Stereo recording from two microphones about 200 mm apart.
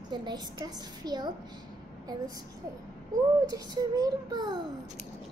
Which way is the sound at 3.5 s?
20° right (ahead or behind).